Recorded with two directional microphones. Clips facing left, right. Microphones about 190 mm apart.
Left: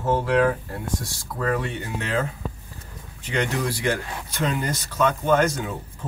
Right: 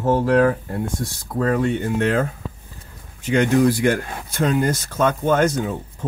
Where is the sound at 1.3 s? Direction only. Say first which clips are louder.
Right 6 dB; 45° right (ahead or behind).